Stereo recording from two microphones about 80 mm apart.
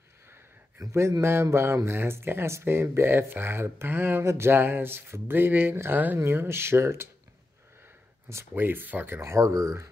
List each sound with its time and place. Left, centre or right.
0.3 s a sound: right
1.2 s speech: right
8.3 s speech: right